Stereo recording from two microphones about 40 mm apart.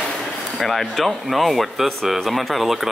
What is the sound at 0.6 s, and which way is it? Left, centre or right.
Speech, centre.